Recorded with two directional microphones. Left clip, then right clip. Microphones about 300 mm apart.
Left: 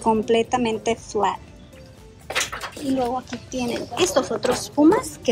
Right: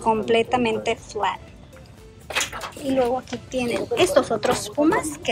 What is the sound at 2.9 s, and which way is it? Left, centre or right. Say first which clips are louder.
A woman's voice: right 3 dB; centre.